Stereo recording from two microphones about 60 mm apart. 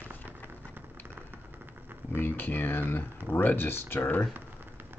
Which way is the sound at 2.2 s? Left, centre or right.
Left.